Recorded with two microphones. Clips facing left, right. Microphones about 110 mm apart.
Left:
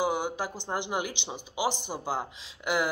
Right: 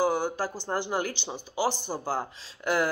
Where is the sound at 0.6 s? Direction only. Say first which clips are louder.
Right 2 dB; 20° left (ahead or behind).